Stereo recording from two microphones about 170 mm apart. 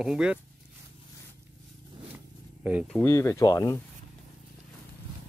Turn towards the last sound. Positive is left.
turn(degrees=20)  # may be behind; listen again after turning